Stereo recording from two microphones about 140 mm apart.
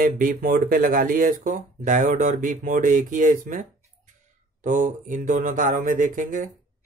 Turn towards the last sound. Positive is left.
turn(degrees=-70)  # may be behind; listen again after turning